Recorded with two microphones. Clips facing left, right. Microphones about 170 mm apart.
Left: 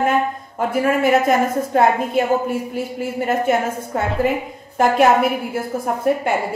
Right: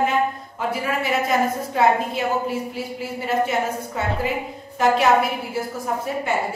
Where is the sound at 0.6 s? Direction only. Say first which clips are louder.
Left 7 dB; 50° left (ahead or behind).